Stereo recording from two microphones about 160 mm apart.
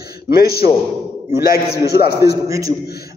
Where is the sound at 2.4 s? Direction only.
20° right (ahead or behind).